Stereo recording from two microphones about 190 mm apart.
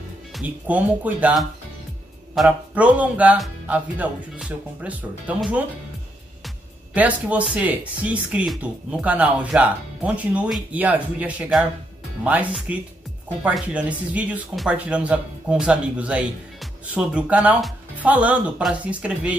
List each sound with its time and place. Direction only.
0.3 s speech: 5° right (ahead or behind)
6.9 s speech: 5° right (ahead or behind)